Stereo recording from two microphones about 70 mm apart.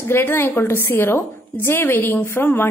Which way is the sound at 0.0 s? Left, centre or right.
Left.